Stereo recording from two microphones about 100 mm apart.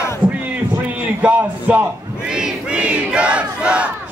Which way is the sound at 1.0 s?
15° right (ahead or behind).